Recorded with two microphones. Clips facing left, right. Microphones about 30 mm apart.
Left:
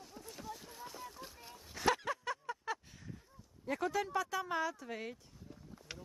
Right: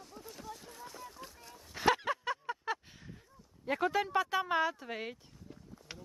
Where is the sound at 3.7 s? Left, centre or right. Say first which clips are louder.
Right 4 dB; right.